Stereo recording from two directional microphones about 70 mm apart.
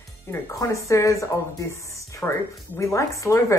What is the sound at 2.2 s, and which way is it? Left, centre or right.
Speech, left.